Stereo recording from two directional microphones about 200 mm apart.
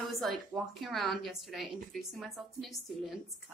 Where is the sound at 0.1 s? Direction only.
Centre (ahead or behind).